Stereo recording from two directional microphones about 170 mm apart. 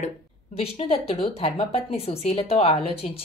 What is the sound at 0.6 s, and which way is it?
A woman's voice, 35° left (ahead or behind).